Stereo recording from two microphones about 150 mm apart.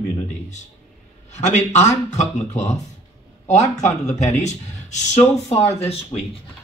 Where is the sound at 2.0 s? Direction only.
50° left (ahead or behind).